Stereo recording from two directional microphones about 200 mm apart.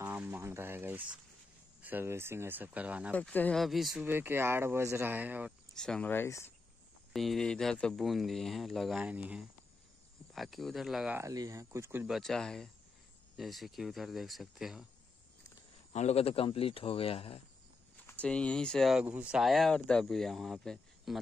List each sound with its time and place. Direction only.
0.0 s a sound: 10° right (ahead or behind)
1.8 s speech: 10° right (ahead or behind)
3.2 s speech: 5° left (ahead or behind); by 5.5 s 10° right (ahead or behind)
5.8 s speech: 5° left (ahead or behind)
7.1 s speech: centre (ahead or behind)
11.1 s speech: 15° right (ahead or behind)
12.1 s speech: centre (ahead or behind)
15.9 s speech: 35° left (ahead or behind)
17.9 s speech: 5° left (ahead or behind)